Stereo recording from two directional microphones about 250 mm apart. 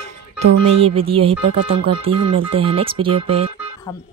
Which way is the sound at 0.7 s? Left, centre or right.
Right.